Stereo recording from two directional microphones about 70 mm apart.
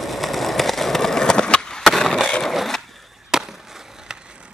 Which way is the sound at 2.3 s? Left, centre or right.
Centre.